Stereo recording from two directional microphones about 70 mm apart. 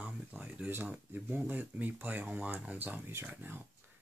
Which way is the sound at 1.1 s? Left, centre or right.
Right.